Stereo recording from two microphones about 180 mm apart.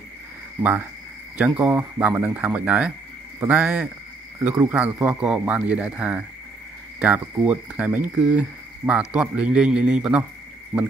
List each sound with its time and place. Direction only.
0.6 s speech: 10° right (ahead or behind)
7.4 s speech: 10° right (ahead or behind)